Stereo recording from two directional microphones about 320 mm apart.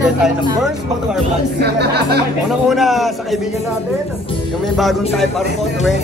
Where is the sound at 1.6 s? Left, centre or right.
Right.